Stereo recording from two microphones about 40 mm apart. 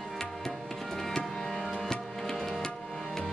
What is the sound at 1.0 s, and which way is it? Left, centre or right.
Music, centre.